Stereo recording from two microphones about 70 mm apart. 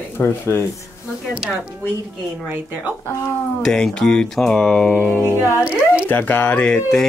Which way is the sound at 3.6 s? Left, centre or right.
Centre.